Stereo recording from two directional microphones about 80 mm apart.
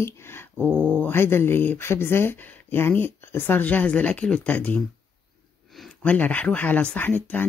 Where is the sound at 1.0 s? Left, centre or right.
Left.